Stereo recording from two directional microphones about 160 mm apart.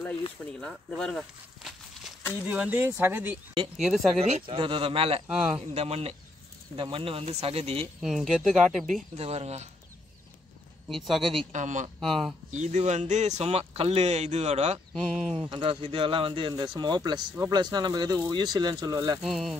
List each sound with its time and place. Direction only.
0.6 s walk: 5° left (ahead or behind)
2.4 s speech: 10° right (ahead or behind)
3.7 s speech: centre (ahead or behind)
4.2 s speech: 40° right (ahead or behind)
8.0 s speech: 5° right (ahead or behind)
9.1 s speech: 40° right (ahead or behind)
10.9 s speech: centre (ahead or behind)
11.5 s speech: 50° right (ahead or behind)
12.0 s speech: centre (ahead or behind)
12.5 s speech: 45° right (ahead or behind)
15.0 s speech: centre (ahead or behind)
15.5 s speech: 30° right (ahead or behind)
19.2 s speech: centre (ahead or behind)